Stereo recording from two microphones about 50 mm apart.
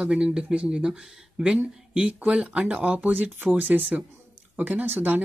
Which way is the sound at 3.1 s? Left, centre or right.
Right.